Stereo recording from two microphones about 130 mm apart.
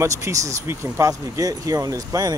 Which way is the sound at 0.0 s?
25° right (ahead or behind).